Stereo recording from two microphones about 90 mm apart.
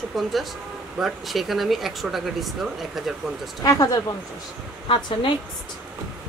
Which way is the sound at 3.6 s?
40° left (ahead or behind).